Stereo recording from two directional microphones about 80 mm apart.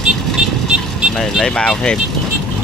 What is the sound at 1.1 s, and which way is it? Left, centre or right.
Speech, centre.